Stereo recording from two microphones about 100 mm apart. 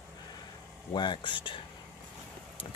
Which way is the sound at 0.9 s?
55° left (ahead or behind).